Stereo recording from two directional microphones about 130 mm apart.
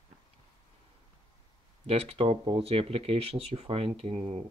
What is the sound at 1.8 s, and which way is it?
Speech, 50° right (ahead or behind).